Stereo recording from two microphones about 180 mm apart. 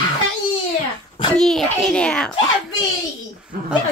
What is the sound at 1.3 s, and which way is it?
Speech, centre (ahead or behind).